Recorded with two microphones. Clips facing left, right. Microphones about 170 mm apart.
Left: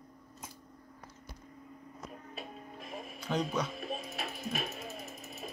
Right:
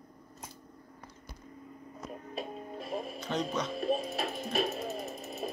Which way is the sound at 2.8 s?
35° right (ahead or behind).